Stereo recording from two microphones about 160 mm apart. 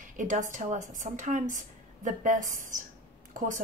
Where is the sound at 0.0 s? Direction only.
50° right (ahead or behind).